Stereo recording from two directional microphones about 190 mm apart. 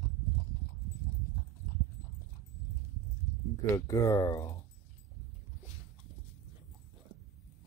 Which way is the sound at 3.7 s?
15° left (ahead or behind).